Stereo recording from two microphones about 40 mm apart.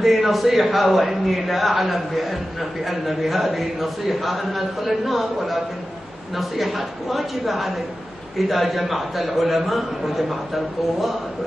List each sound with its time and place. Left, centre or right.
0.0 s a man's voice: centre